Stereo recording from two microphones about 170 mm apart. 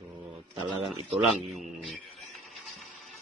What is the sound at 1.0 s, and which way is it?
A man's voice, centre (ahead or behind).